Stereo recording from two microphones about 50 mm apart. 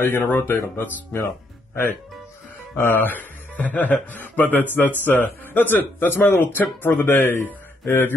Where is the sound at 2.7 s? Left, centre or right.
Left.